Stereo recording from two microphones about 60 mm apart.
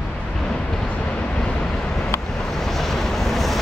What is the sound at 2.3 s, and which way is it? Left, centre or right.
Vehicle, centre.